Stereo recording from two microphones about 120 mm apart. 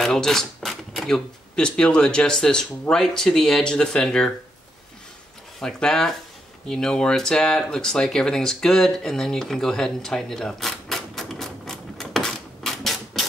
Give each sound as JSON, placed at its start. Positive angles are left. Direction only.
{"t": 0.0, "sound": "speech", "side_deg": 5}
{"t": 5.6, "sound": "speech", "side_deg": 5}